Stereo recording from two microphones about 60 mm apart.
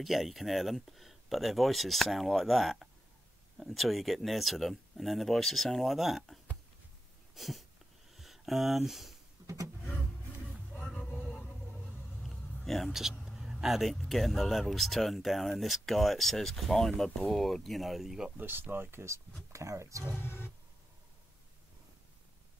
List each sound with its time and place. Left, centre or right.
0.0 s speech: centre
9.4 s a sound: right
12.2 s a sound: centre
13.2 s speech: centre
18.4 s speech: right
19.5 s speech: right
20.2 s roar: left